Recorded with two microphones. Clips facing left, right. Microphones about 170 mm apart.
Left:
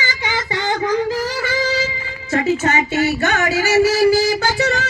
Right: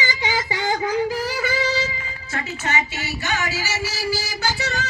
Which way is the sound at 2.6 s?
50° left (ahead or behind).